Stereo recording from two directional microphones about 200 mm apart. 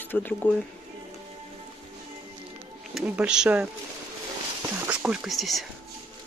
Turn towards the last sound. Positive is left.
turn(degrees=0)  # may be behind; listen again after turning